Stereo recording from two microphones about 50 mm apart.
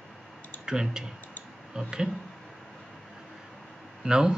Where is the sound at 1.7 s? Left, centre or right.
Centre.